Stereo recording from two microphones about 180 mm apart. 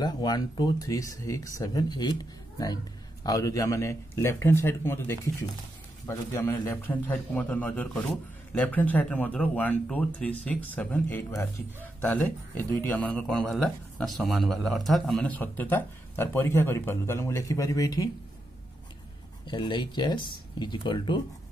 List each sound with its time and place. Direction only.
0.0 s speech: 20° left (ahead or behind)
19.4 s speech: 25° left (ahead or behind)